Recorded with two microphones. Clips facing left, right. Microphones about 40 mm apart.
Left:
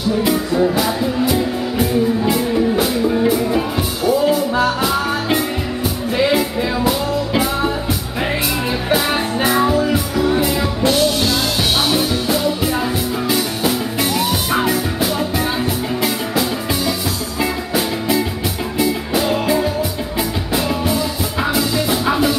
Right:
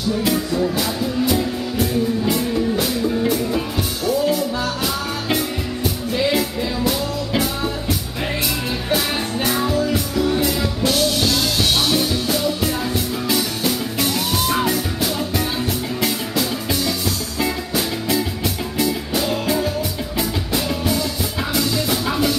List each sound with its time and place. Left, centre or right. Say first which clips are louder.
0.2 s music: left 5 dB; centre
8.8 s music: left 4 dB; centre